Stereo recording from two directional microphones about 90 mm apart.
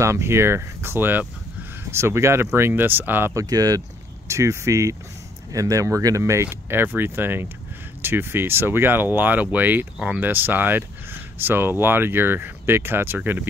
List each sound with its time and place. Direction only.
0.0 s speech: 30° right (ahead or behind)
3.3 s speech: 45° right (ahead or behind)
4.3 s speech: 30° right (ahead or behind)